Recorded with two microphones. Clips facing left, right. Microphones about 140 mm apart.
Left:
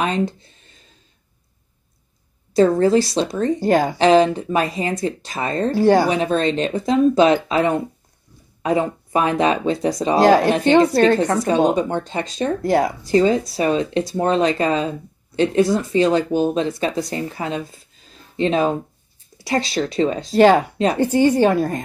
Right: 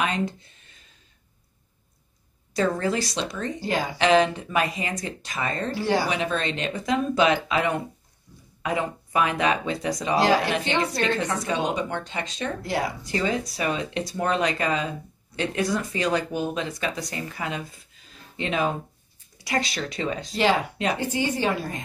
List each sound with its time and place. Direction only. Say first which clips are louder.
0.0 s speech: left 5 dB; 35° left (ahead or behind)
2.5 s speech: left 10 dB; 30° left (ahead or behind)
3.5 s a woman's voice: left 10 dB; 50° left (ahead or behind)
4.0 s speech: left 3 dB; 35° left (ahead or behind)
5.7 s speech: left 11 dB; 45° left (ahead or behind)
10.2 s a woman's voice: left 10 dB; 50° left (ahead or behind); by 20.3 s 30° left (ahead or behind)
20.3 s a woman's voice: left 10 dB; 50° left (ahead or behind)
20.7 s speech: left 7 dB; 35° left (ahead or behind)
21.0 s a woman's voice: left 14 dB; 45° left (ahead or behind)